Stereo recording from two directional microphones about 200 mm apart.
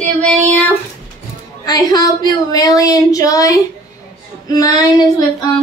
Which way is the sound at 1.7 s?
20° left (ahead or behind).